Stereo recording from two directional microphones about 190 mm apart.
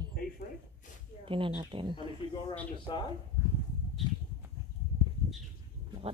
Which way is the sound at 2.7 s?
25° left (ahead or behind).